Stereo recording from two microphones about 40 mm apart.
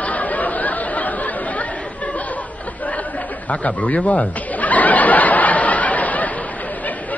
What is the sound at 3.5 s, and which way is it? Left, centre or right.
Snicker, left.